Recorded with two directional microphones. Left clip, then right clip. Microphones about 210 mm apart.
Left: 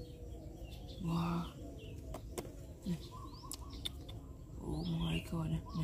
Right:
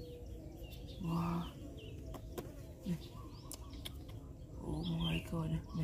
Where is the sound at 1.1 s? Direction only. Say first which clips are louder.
Left 1 dB; 5° left (ahead or behind).